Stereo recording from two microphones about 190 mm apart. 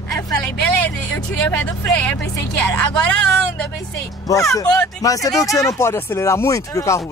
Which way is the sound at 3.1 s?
5° left (ahead or behind).